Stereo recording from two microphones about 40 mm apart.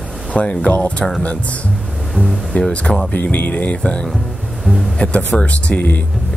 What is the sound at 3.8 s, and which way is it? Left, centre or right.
Speech, left.